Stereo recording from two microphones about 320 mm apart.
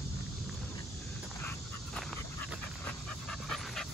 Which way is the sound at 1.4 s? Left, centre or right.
Centre.